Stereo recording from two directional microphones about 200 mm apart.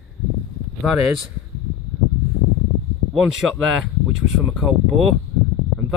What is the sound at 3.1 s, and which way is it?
Speech, centre (ahead or behind).